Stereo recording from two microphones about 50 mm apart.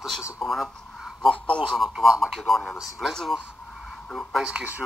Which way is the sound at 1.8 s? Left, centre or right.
Centre.